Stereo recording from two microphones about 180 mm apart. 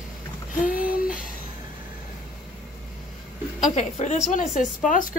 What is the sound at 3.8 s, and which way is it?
A woman's voice, 35° left (ahead or behind).